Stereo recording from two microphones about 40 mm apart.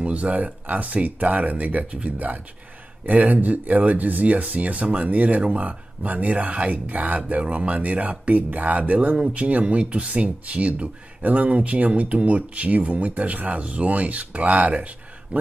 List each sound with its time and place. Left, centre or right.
0.0 s speech: right
4.8 s speech: right
5.1 s speech: right